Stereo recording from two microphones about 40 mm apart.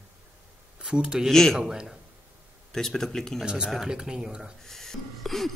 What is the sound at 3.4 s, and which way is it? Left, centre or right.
Speech, right.